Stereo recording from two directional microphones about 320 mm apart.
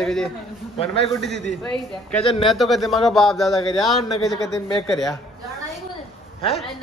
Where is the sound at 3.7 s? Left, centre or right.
Centre.